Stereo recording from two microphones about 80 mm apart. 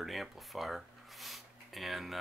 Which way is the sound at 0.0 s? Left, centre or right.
Centre.